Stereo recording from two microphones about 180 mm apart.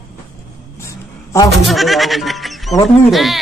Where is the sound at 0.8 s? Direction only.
15° left (ahead or behind).